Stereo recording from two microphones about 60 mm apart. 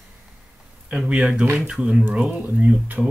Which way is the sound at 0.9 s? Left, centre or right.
Centre.